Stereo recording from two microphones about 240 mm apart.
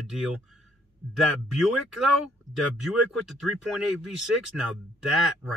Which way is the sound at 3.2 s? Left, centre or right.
Centre.